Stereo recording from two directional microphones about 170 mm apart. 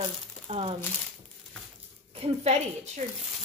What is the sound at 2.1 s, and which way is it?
Speech, 35° right (ahead or behind).